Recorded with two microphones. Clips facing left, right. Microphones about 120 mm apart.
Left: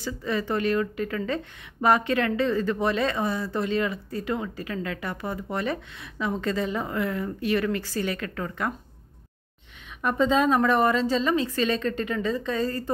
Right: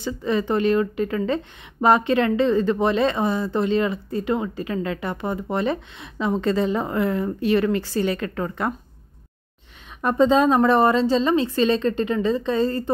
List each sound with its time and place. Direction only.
0.0 s a woman's voice: 25° right (ahead or behind)
10.0 s a woman's voice: 30° right (ahead or behind)